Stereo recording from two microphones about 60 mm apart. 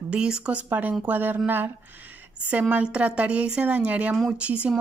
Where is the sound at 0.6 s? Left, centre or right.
Right.